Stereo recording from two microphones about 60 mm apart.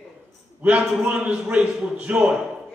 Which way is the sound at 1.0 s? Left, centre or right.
Centre.